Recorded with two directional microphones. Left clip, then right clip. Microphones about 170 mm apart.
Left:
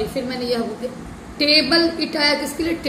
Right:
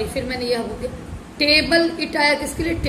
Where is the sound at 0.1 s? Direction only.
20° left (ahead or behind).